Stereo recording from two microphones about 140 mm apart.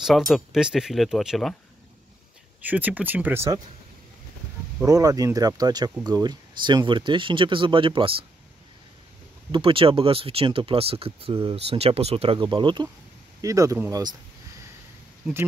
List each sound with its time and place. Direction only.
0.3 s speech: 5° right (ahead or behind)
2.6 s speech: 10° right (ahead or behind)
4.8 s speech: 25° right (ahead or behind)
9.5 s speech: 40° right (ahead or behind)
13.4 s speech: 25° right (ahead or behind)